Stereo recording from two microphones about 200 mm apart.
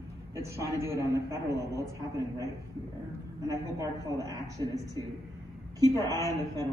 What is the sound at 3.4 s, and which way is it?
A man's voice, 15° right (ahead or behind).